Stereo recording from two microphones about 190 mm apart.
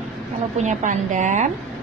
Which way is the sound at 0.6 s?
40° right (ahead or behind).